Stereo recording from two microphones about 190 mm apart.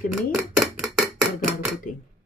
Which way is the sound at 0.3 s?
Centre (ahead or behind).